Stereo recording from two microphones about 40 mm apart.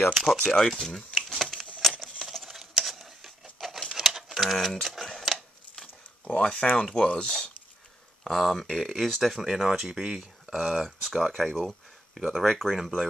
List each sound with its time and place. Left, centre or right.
0.1 s speech: centre
0.4 s speech: centre
1.3 s a sound: centre
1.8 s coin: centre
2.3 s a sound: centre
6.4 s speech: left
8.2 s speech: centre
10.8 s speech: centre